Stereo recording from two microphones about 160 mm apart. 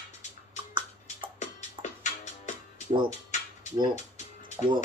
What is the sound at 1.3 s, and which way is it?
Music, 50° left (ahead or behind).